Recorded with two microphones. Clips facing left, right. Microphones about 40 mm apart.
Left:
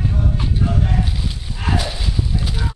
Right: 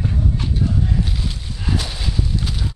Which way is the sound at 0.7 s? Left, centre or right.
Left.